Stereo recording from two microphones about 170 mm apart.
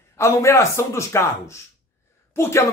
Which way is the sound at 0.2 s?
15° left (ahead or behind).